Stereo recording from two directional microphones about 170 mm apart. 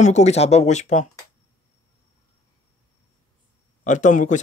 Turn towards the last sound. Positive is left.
turn(degrees=45)  # may be behind; listen again after turning